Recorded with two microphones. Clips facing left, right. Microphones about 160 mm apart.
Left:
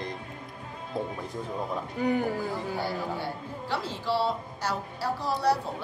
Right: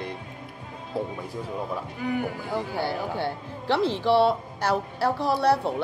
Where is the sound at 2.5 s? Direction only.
70° right (ahead or behind).